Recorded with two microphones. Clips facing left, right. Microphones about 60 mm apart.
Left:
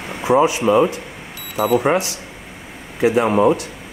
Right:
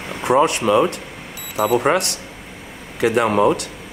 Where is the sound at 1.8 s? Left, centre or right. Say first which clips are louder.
Even; right.